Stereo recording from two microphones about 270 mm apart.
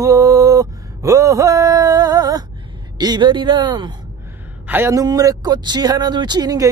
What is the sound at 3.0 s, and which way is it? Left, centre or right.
Speech, centre.